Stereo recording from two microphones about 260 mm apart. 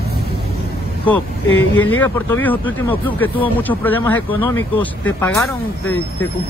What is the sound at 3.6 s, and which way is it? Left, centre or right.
Speech, centre.